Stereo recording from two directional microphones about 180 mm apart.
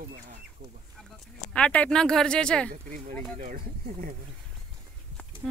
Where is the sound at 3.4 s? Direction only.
50° right (ahead or behind).